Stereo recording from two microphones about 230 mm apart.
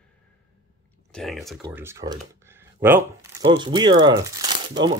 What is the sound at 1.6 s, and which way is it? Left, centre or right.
Speech, centre.